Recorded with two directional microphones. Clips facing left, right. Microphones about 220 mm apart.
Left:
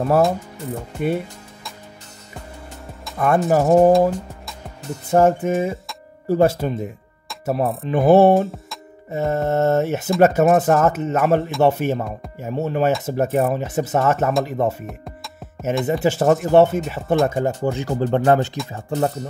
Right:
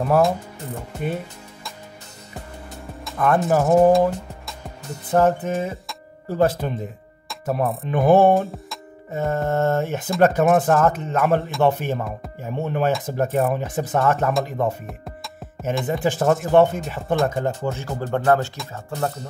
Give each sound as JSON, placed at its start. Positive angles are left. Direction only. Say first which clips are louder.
{"t": 0.9, "sound": "music", "louder": "left 5 dB", "side_deg": 10}
{"t": 3.1, "sound": "speech", "louder": "left 1 dB", "side_deg": 10}
{"t": 4.0, "sound": "music", "louder": "left 2 dB", "side_deg": 10}
{"t": 5.1, "sound": "speech", "louder": "left 3 dB", "side_deg": 10}
{"t": 18.1, "sound": "speech", "louder": "left 1 dB", "side_deg": 20}